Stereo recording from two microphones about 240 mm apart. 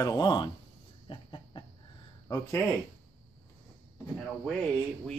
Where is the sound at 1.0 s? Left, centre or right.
Left.